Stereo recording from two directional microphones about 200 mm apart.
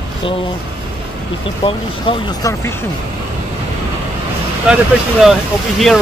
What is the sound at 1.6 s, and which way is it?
Speech, 25° left (ahead or behind).